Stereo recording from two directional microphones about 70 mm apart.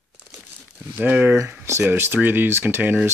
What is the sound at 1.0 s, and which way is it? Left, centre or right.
Speech, right.